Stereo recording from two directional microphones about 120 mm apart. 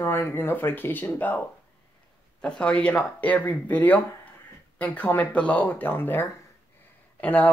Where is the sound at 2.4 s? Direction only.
10° left (ahead or behind).